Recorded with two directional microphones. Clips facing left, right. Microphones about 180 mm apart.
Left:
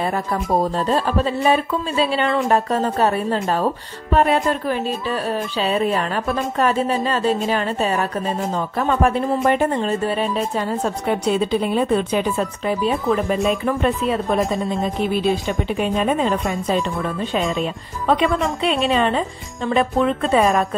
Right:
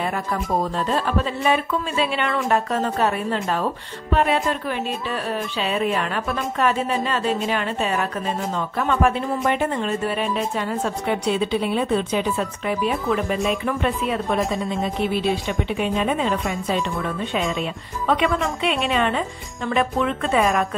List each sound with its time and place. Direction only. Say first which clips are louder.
0.0 s speech: left 3 dB; 35° left (ahead or behind)
12.4 s speech: left 2 dB; 35° left (ahead or behind)
18.0 s speech: left 3 dB; 35° left (ahead or behind)